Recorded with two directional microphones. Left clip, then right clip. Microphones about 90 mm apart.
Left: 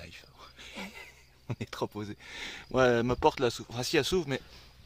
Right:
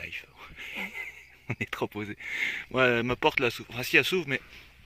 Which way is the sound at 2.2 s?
5° left (ahead or behind).